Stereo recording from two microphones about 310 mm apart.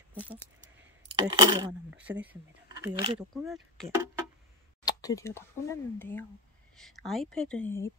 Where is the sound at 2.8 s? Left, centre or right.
Centre.